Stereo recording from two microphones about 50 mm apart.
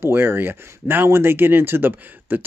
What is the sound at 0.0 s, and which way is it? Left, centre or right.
Speech, right.